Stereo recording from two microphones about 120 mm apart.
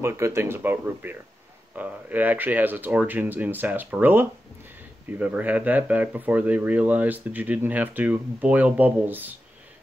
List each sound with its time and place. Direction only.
0.0 s speech: 25° right (ahead or behind)